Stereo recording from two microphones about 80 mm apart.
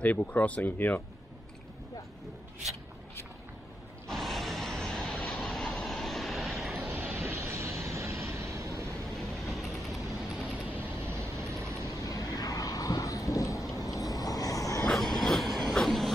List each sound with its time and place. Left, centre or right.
0.0 s speech: centre
4.1 s vehicle: centre
6.7 s vehicle: right
9.1 s vehicle: centre
11.1 s vehicle: right
12.0 s vehicle: left
14.9 s train: centre